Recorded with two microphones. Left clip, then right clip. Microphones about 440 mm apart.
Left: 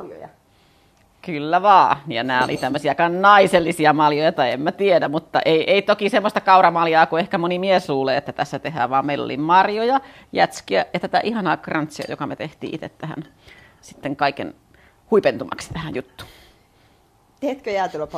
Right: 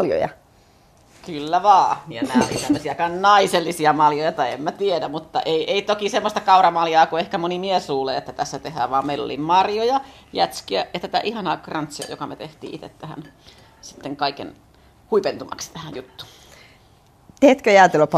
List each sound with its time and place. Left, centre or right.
1.2 s speech: left
17.4 s speech: right